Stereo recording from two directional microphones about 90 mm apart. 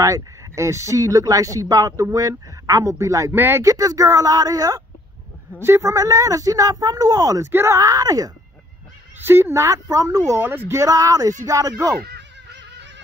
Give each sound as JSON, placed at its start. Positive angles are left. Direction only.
{"t": 0.0, "sound": "speech", "side_deg": -35}
{"t": 3.3, "sound": "speech", "side_deg": -25}
{"t": 3.6, "sound": "speech", "side_deg": -40}
{"t": 5.6, "sound": "speech", "side_deg": -30}
{"t": 7.5, "sound": "speech", "side_deg": -30}
{"t": 7.8, "sound": "speech", "side_deg": -40}
{"t": 9.2, "sound": "speech", "side_deg": -25}
{"t": 10.3, "sound": "speech", "side_deg": -25}
{"t": 10.8, "sound": "speech", "side_deg": -40}